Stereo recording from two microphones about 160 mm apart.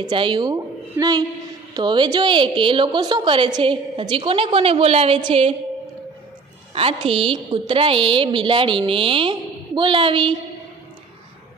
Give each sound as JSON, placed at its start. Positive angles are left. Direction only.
{"t": 0.0, "sound": "a woman's voice", "side_deg": -30}
{"t": 6.7, "sound": "a woman's voice", "side_deg": -35}